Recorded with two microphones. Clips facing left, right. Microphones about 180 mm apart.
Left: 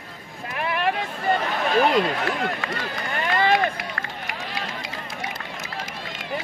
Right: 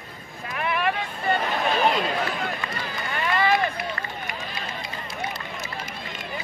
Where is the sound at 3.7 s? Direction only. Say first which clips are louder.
Right 1 dB; 90° left.